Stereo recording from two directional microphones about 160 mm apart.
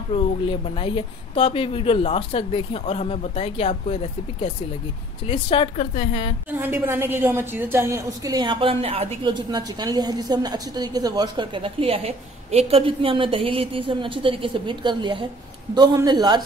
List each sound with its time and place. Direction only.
0.1 s a woman's voice: 35° left (ahead or behind)
6.6 s a woman's voice: 15° right (ahead or behind); by 9.2 s 40° right (ahead or behind)
9.2 s a woman's voice: 25° right (ahead or behind)